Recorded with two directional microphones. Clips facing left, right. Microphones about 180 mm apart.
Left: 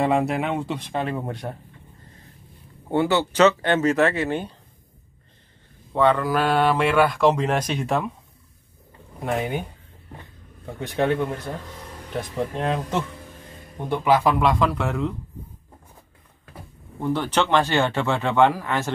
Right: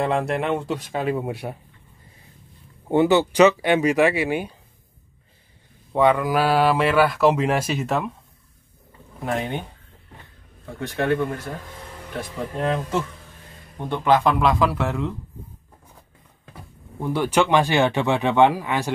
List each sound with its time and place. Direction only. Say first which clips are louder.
0.0 s speech: left 1 dB; centre (ahead or behind)
2.9 s speech: right 4 dB; 15° right (ahead or behind)
5.9 s speech: right 1 dB; 15° right (ahead or behind)
9.2 s speech: left 1 dB; centre (ahead or behind)
10.6 s speech: left 2 dB; 20° left (ahead or behind)
13.8 s speech: even; 10° left (ahead or behind)
17.0 s speech: right 2 dB; 10° right (ahead or behind)